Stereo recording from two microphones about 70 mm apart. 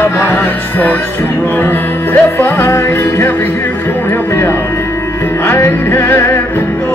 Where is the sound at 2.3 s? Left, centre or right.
Left.